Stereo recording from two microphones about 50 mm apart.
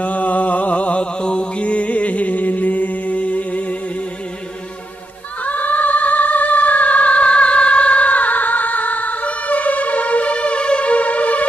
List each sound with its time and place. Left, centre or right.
0.0 s mantra: left
5.4 s music: left